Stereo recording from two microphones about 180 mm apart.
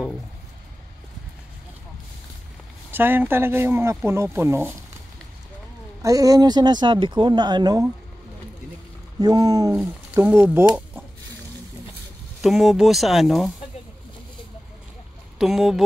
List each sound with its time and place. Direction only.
2.9 s speech: 10° right (ahead or behind)
6.0 s speech: 20° right (ahead or behind)
9.2 s speech: 20° right (ahead or behind)
12.4 s speech: centre (ahead or behind)
15.3 s speech: centre (ahead or behind)